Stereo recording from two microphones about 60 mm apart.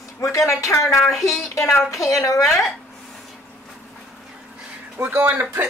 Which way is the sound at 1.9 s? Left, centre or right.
Left.